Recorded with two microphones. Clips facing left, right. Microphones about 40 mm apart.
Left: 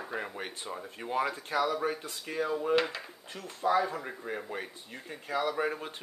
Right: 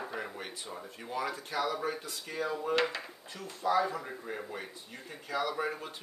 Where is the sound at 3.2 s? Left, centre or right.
Left.